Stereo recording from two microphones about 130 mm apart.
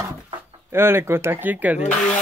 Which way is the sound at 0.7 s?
20° right (ahead or behind).